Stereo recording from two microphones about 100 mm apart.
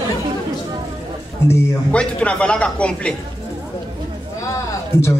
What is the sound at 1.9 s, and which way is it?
A man's voice, 10° left (ahead or behind).